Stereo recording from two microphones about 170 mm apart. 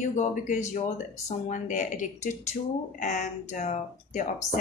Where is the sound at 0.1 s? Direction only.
45° left (ahead or behind).